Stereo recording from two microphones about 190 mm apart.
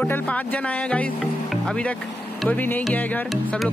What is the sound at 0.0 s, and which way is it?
Speech, 5° left (ahead or behind).